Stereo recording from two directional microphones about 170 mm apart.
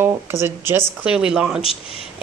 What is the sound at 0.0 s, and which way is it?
Speech, 15° right (ahead or behind).